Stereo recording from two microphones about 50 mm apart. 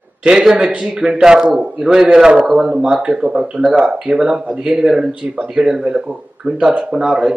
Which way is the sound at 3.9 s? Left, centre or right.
Centre.